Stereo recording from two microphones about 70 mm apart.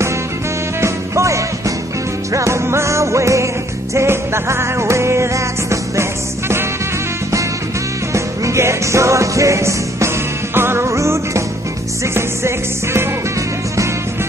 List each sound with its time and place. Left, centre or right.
0.7 s music: right
8.1 s music: right